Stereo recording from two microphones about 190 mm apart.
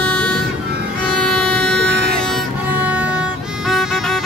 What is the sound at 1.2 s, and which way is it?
Music, 5° left (ahead or behind).